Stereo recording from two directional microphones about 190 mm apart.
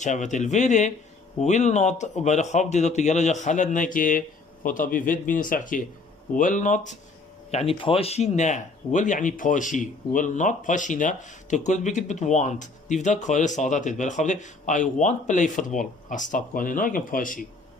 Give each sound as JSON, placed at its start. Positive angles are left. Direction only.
{"t": 0.0, "sound": "speech", "side_deg": 40}
{"t": 7.5, "sound": "speech", "side_deg": 30}